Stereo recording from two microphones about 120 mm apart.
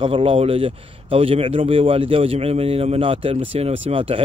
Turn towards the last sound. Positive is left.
turn(degrees=-55)  # may be behind; listen again after turning